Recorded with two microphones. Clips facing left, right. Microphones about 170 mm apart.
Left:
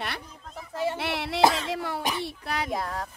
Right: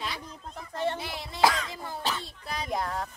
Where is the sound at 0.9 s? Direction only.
75° left (ahead or behind).